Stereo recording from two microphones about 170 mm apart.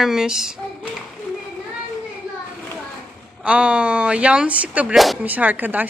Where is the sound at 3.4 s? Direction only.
5° right (ahead or behind).